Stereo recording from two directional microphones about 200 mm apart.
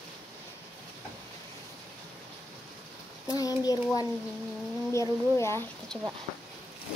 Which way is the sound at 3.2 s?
20° left (ahead or behind).